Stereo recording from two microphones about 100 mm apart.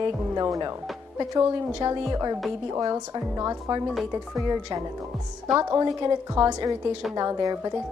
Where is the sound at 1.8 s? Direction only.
40° right (ahead or behind).